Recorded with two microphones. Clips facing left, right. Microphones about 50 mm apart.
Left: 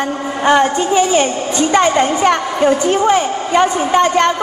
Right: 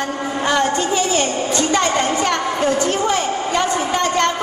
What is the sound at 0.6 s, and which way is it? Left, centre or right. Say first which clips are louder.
A woman's voice: left 5 dB; centre.